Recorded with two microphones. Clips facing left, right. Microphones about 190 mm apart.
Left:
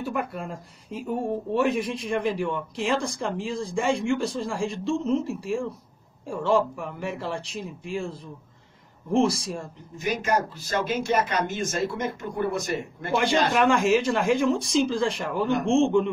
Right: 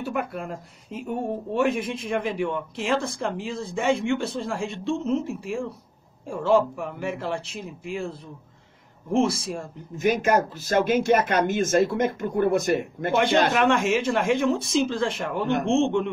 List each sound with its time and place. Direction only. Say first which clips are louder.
0.0 s speech: right 1 dB; centre (ahead or behind)
9.9 s speech: right 4 dB; 50° right (ahead or behind)
13.1 s speech: right 2 dB; centre (ahead or behind)